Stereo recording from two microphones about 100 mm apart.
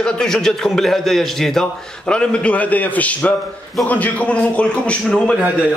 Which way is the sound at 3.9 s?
15° left (ahead or behind).